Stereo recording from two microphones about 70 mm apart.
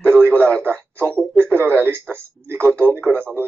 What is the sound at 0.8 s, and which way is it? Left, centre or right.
Speech, right.